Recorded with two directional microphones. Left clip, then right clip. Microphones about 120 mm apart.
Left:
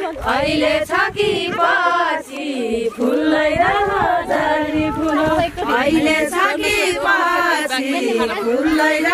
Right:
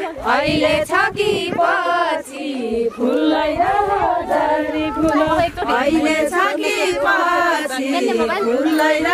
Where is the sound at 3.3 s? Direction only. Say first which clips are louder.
Left 1 dB; 35° left (ahead or behind).